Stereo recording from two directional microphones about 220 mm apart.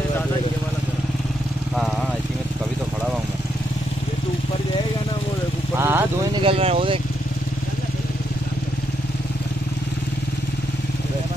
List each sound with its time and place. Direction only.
5.8 s vehicle: 10° right (ahead or behind)
6.4 s speech: 25° right (ahead or behind)